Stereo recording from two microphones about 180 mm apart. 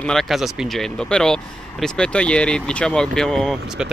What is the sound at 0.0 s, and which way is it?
Speech, centre (ahead or behind).